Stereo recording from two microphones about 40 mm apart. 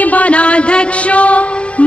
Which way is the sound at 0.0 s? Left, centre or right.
Left.